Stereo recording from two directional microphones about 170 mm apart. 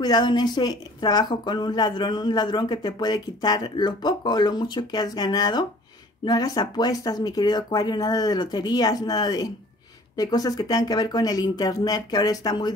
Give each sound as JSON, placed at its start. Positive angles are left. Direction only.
{"t": 0.0, "sound": "a woman's voice", "side_deg": 25}